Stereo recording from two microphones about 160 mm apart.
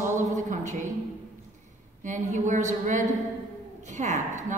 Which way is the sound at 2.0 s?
50° right (ahead or behind).